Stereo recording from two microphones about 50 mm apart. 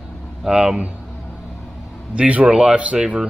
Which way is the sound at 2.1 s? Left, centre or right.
Right.